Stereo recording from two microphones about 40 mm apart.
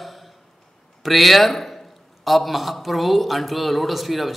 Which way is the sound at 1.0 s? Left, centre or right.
Centre.